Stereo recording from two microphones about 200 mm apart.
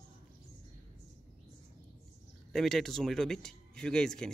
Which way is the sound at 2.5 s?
Centre (ahead or behind).